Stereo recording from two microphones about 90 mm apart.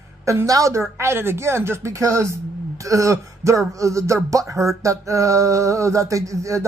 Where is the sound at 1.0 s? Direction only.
25° right (ahead or behind).